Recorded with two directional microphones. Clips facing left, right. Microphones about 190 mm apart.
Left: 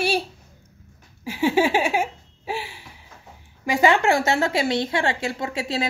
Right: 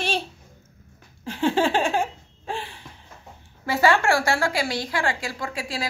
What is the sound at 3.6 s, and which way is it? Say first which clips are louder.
A woman's voice: left 2 dB; 15° left (ahead or behind).